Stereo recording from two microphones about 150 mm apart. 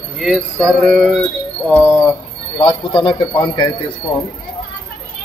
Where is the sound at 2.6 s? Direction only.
35° left (ahead or behind).